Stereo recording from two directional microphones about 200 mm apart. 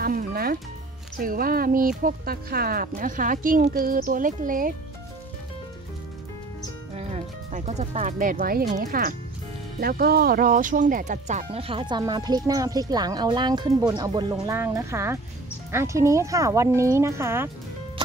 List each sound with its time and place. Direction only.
0.0 s music: 45° right (ahead or behind)
1.1 s speech: 45° right (ahead or behind)
7.0 s speech: 30° right (ahead or behind); by 17.5 s 10° right (ahead or behind)